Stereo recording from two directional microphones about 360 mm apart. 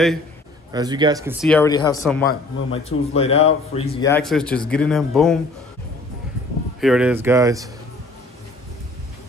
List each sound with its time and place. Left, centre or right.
0.7 s a man's voice: centre
6.8 s speech: centre